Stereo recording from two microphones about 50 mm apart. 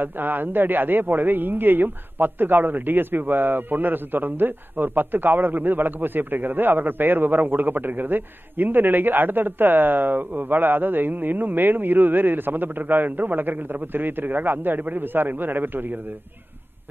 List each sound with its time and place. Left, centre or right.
0.0 s a man's voice: right